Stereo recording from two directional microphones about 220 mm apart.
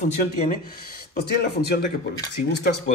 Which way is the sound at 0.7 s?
45° left (ahead or behind).